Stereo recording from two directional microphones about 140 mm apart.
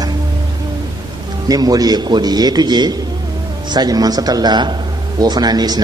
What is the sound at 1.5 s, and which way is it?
A man's voice, 25° right (ahead or behind).